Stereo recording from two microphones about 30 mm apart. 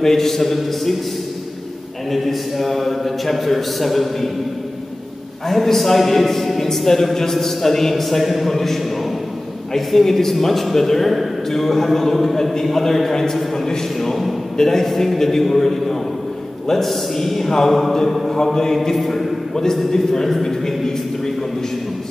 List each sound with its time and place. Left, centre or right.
0.0 s a man's voice: centre
2.0 s a man's voice: centre
5.5 s a man's voice: centre
9.8 s a man's voice: centre
14.6 s a man's voice: centre
18.3 s a man's voice: centre
18.8 s a man's voice: centre
20.4 s a sound: centre